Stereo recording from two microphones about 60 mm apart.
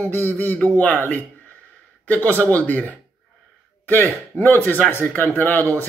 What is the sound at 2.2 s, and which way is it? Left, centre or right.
Speech, left.